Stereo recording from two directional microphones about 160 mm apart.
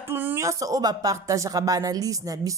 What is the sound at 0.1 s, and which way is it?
A woman's voice, 15° right (ahead or behind).